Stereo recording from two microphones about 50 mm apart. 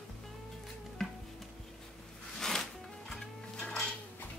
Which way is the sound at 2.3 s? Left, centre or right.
Centre.